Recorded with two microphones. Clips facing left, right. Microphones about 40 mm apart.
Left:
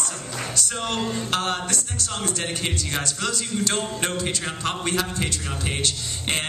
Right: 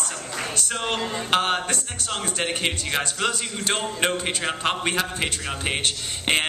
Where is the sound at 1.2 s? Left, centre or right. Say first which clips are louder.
Right 3 dB; right.